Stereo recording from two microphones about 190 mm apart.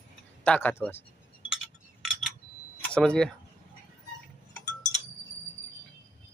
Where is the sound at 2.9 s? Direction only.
5° left (ahead or behind).